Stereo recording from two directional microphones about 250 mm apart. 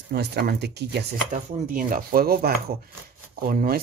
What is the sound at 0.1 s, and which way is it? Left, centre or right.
Speech, right.